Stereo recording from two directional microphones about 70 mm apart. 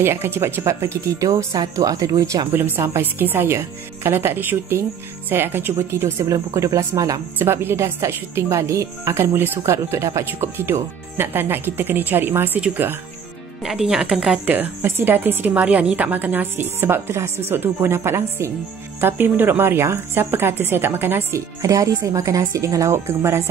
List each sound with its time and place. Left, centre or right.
0.0 s speech: right
2.5 s speech: right
6.3 s speech: right
7.3 s speech: right
10.6 s speech: right
13.7 s speech: centre
14.4 s a woman's voice: right
21.5 s speech: right